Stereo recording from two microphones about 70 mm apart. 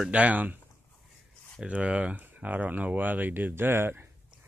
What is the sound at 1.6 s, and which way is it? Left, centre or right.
Speech, centre.